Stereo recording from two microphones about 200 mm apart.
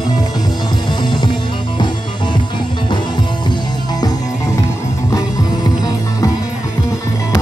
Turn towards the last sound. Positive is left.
turn(degrees=20)  # may be behind; listen again after turning